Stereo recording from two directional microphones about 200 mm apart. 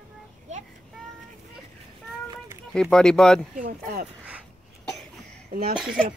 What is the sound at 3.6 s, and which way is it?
Speech, 45° right (ahead or behind).